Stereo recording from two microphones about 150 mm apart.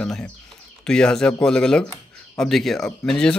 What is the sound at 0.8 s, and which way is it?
Speech, 5° left (ahead or behind).